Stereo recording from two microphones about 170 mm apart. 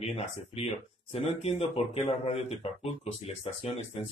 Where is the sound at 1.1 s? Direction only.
40° left (ahead or behind).